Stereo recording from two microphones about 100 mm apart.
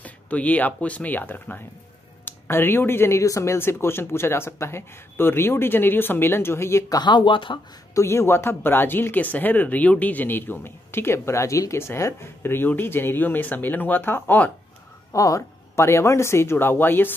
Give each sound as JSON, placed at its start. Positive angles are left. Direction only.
{"t": 0.0, "sound": "speech", "side_deg": 15}
{"t": 6.9, "sound": "speech", "side_deg": 45}
{"t": 7.9, "sound": "speech", "side_deg": 30}
{"t": 15.1, "sound": "speech", "side_deg": 30}